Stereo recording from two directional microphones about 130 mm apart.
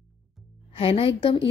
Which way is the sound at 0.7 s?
45° left (ahead or behind).